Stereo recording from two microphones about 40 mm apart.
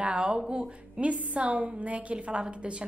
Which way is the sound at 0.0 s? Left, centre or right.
Right.